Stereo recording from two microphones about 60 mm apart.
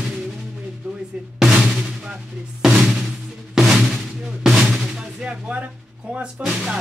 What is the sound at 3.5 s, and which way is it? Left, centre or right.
Speech, centre.